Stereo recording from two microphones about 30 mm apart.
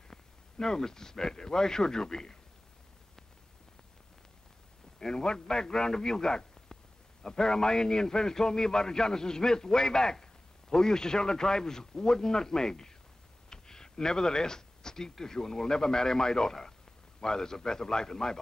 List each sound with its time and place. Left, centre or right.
0.1 s speech: centre
4.9 s a man's voice: left